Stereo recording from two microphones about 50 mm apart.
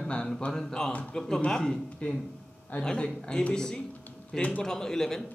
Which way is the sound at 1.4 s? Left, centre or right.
Centre.